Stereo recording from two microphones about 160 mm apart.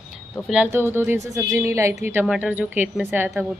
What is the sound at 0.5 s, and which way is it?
A woman's voice, 10° right (ahead or behind).